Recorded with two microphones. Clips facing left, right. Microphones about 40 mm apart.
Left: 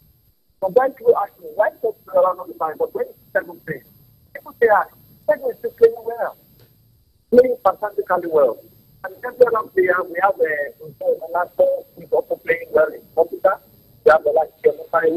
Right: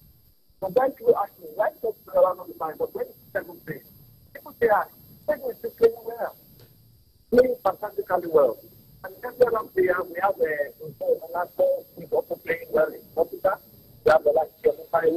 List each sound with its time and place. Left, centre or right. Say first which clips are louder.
0.6 s speech: left 6 dB; left
4.3 s a sound: left 6 dB; left
4.7 s speech: left 6 dB; left
7.4 s speech: left 7 dB; left
9.5 s speech: left 5 dB; left
9.8 s a man's voice: left 6 dB; left